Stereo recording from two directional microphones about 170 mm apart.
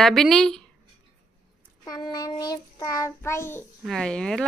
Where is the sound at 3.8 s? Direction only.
5° left (ahead or behind).